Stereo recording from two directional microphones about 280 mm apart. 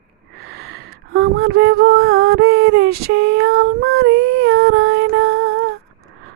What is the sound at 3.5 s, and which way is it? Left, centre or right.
Female singing, right.